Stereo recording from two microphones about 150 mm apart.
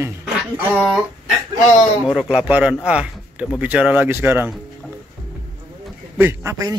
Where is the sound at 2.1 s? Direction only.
5° right (ahead or behind).